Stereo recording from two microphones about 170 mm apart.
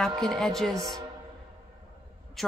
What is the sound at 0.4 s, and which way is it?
Speech, centre (ahead or behind).